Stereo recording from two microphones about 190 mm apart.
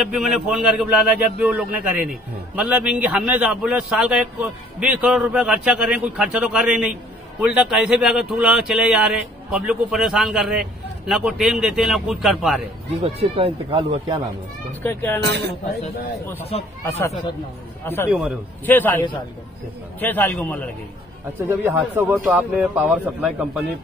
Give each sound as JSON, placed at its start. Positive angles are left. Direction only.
{"t": 0.0, "sound": "a man's voice", "side_deg": 0}
{"t": 13.0, "sound": "speech", "side_deg": -30}
{"t": 14.8, "sound": "a man's voice", "side_deg": 10}
{"t": 15.2, "sound": "speech", "side_deg": -65}
{"t": 16.5, "sound": "speech", "side_deg": 35}
{"t": 17.8, "sound": "a man's voice", "side_deg": 10}
{"t": 18.1, "sound": "speech", "side_deg": -5}
{"t": 18.7, "sound": "a man's voice", "side_deg": 10}
{"t": 21.5, "sound": "speech", "side_deg": -15}